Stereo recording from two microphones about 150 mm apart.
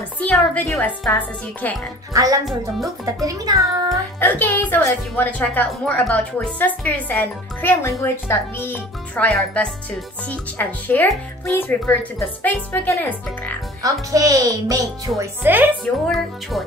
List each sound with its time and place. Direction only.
0.2 s speech: 10° left (ahead or behind)
2.1 s a child's voice: 25° right (ahead or behind)
2.4 s speech: centre (ahead or behind)
3.3 s a child's voice: 25° right (ahead or behind)
4.2 s speech: 15° left (ahead or behind)
13.8 s a child's voice: 25° right (ahead or behind)
15.8 s speech: centre (ahead or behind)